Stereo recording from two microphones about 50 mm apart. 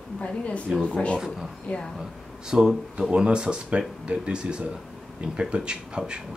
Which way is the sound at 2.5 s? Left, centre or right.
Centre.